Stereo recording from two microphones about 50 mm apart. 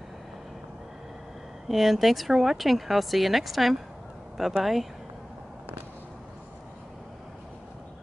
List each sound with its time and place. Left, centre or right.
1.7 s speech: centre